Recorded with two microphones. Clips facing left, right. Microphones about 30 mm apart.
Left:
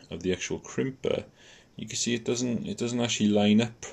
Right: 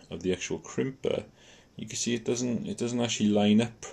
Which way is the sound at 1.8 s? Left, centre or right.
Centre.